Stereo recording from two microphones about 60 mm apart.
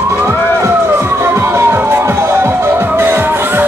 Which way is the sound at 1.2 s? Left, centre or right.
Right.